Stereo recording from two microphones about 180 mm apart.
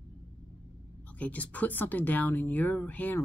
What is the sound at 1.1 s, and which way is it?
Speech, 10° left (ahead or behind).